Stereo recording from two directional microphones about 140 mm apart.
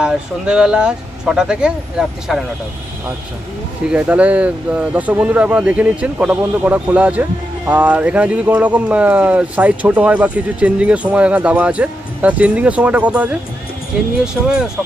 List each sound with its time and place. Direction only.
0.0 s speech: 5° right (ahead or behind)
3.9 s speech: 10° right (ahead or behind)